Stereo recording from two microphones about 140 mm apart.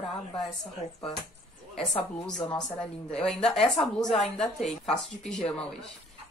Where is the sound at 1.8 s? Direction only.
Centre (ahead or behind).